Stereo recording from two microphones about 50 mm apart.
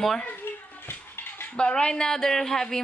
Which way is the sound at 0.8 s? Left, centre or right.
Left.